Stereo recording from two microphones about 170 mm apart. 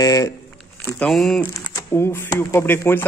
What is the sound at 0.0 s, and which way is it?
Speech, 20° left (ahead or behind).